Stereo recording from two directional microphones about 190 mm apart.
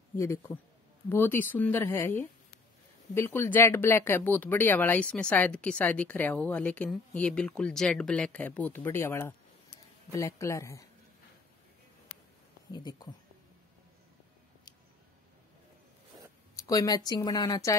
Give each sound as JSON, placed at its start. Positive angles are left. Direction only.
{"t": 0.2, "sound": "speech", "side_deg": 15}
{"t": 12.7, "sound": "speech", "side_deg": 20}
{"t": 16.5, "sound": "speech", "side_deg": 20}